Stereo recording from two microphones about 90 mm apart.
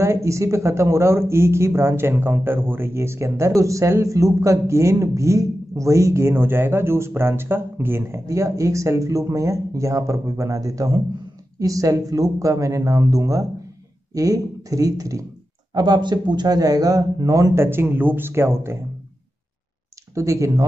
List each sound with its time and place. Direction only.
0.0 s speech: 35° right (ahead or behind)
15.7 s speech: 50° right (ahead or behind)
17.6 s speech: 25° right (ahead or behind)
20.2 s speech: 35° right (ahead or behind)